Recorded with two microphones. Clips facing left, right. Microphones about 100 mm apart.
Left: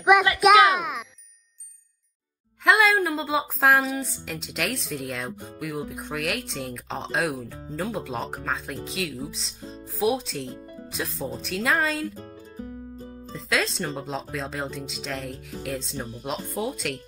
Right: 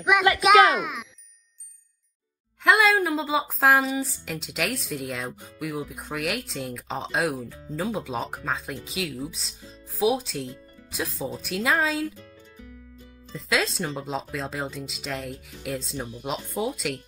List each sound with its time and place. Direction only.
0.4 s a woman's voice: centre (ahead or behind)
2.6 s a woman's voice: centre (ahead or behind)
12.2 s music: 40° left (ahead or behind)
13.5 s a woman's voice: centre (ahead or behind)